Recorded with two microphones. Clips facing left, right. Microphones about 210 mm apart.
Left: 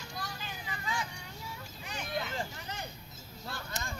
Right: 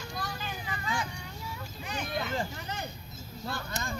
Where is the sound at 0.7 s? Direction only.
65° right (ahead or behind).